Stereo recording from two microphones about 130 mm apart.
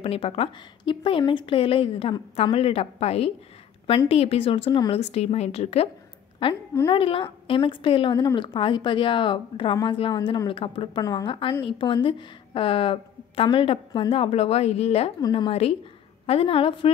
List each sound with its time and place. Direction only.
0.0 s a woman's voice: 50° left (ahead or behind)
4.9 s a woman's voice: 55° left (ahead or behind)
6.4 s a woman's voice: 45° left (ahead or behind)
11.0 s a woman's voice: 30° left (ahead or behind)
11.2 s a woman's voice: 40° left (ahead or behind)